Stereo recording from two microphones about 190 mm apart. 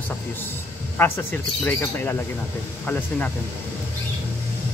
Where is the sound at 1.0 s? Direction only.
10° left (ahead or behind).